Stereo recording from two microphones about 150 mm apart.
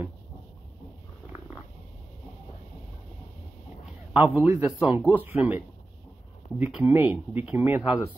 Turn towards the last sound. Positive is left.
turn(degrees=-15)  # may be behind; listen again after turning